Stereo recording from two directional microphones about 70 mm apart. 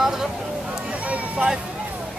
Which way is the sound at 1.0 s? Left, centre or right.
Centre.